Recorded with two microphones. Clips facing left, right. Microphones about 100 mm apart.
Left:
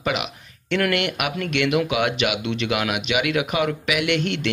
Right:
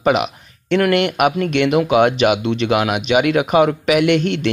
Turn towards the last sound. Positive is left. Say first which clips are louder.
# right 7 dB
turn(degrees=-40)  # may be behind; listen again after turning